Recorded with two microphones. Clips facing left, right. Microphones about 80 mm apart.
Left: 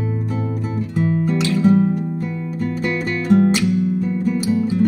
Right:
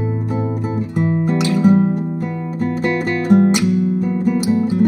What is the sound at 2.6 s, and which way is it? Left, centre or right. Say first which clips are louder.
Music: right 4 dB; right.